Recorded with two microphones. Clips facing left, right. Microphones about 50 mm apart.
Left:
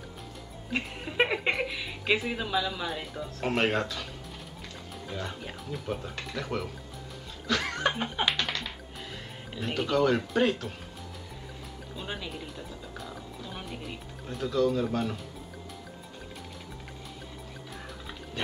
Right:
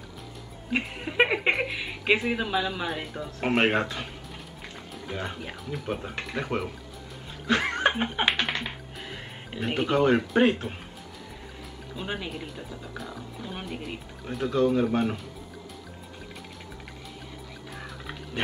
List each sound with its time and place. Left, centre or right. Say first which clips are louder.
0.7 s chuckle: right 4 dB; right
1.8 s speech: right 3 dB; centre
2.9 s speech: right 3 dB; centre
3.3 s speech: right 4 dB; right
7.4 s music: right 4 dB; right
12.0 s speech: right 4 dB; right
12.9 s speech: right 3 dB; centre
13.4 s speech: right 5 dB; right